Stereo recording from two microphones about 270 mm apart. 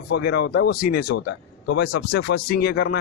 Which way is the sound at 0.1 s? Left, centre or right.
Left.